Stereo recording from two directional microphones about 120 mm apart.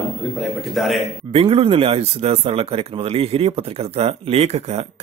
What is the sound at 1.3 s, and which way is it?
Speech, 55° right (ahead or behind).